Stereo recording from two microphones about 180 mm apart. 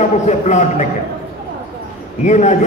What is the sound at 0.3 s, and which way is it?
Speech, 40° left (ahead or behind).